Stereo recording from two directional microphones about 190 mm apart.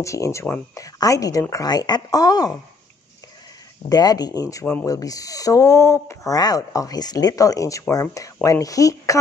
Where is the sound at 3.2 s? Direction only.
20° left (ahead or behind).